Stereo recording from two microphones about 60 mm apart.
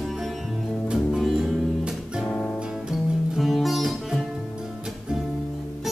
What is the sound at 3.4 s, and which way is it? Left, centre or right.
Music, centre.